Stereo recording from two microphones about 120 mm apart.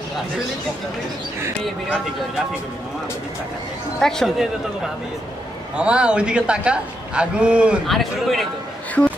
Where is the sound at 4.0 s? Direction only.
5° left (ahead or behind).